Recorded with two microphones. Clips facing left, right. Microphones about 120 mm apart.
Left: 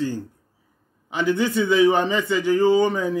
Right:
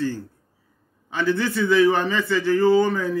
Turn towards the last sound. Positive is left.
turn(degrees=20)  # may be behind; listen again after turning